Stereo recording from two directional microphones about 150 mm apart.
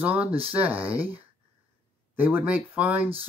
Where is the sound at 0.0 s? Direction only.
10° right (ahead or behind).